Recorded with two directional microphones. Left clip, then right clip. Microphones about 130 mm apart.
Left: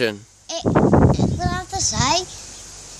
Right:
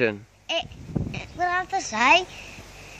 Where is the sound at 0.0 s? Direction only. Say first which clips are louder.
Left 2 dB; 25° left (ahead or behind).